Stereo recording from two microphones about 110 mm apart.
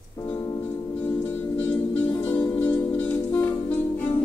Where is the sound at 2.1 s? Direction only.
15° left (ahead or behind).